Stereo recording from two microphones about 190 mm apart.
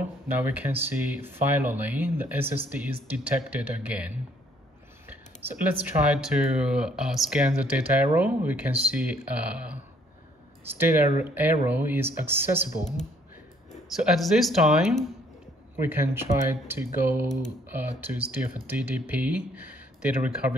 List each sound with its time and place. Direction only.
0.5 s speech: 10° right (ahead or behind)
14.1 s speech: centre (ahead or behind)